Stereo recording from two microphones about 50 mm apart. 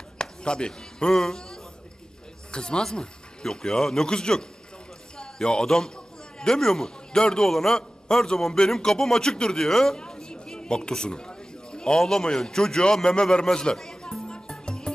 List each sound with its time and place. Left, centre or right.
0.2 s a man's voice: centre